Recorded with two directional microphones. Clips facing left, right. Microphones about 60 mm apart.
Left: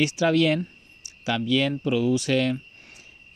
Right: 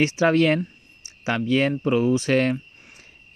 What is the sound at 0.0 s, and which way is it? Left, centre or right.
Speech, right.